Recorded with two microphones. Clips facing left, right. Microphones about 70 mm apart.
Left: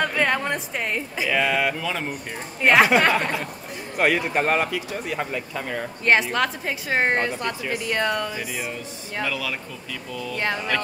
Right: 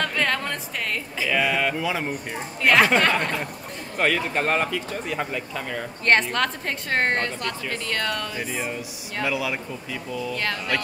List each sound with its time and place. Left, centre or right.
0.0 s a sound: centre
1.3 s speech: centre
1.8 s speech: centre
2.6 s speech: centre
8.4 s speech: centre
9.2 s speech: centre
10.3 s speech: centre